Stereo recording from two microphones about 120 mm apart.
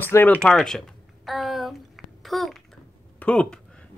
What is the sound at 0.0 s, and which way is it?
Speech, 15° left (ahead or behind).